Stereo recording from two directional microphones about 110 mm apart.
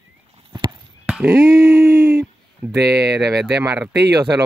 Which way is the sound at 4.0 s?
30° right (ahead or behind).